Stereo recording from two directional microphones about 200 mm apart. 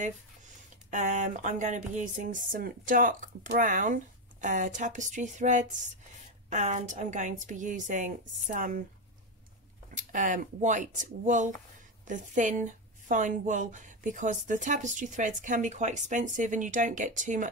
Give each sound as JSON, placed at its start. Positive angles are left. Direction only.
{"t": 0.8, "sound": "a woman's voice", "side_deg": -40}
{"t": 9.8, "sound": "a woman's voice", "side_deg": -40}